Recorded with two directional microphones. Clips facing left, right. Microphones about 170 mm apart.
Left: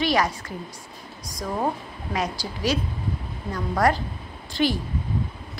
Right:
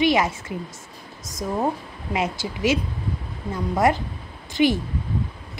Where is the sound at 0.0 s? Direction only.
20° right (ahead or behind).